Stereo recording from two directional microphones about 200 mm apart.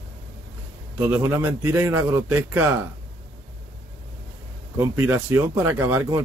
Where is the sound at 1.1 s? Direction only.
10° right (ahead or behind).